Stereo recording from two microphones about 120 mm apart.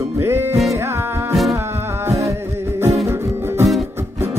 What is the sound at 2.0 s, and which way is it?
Music, 25° right (ahead or behind).